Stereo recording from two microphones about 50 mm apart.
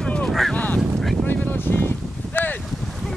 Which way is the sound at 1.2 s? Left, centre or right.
Left.